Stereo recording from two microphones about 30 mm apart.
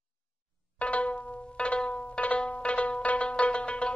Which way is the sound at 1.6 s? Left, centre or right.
Left.